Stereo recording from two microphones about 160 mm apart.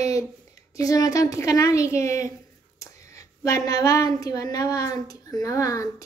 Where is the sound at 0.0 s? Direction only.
20° left (ahead or behind).